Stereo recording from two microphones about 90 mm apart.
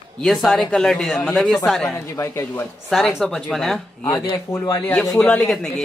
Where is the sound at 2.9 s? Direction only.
Centre (ahead or behind).